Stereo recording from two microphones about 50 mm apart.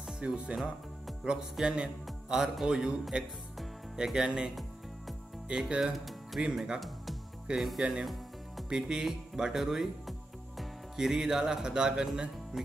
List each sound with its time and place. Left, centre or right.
0.3 s a man's voice: centre
5.7 s speech: right
5.9 s music: centre
6.5 s a man's voice: centre
7.8 s music: centre
8.6 s a man's voice: centre